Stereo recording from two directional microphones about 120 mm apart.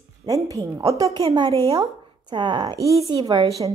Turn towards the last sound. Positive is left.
turn(degrees=-35)  # may be behind; listen again after turning